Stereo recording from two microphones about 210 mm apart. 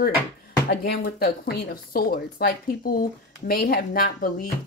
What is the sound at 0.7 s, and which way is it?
Speech, 50° left (ahead or behind).